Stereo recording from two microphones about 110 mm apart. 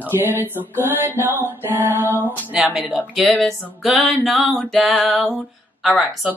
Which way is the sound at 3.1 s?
Centre (ahead or behind).